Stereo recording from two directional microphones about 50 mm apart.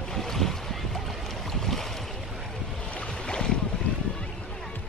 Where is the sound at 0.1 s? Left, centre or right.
Centre.